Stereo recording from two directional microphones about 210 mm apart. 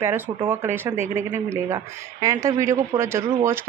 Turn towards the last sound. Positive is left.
turn(degrees=-15)  # may be behind; listen again after turning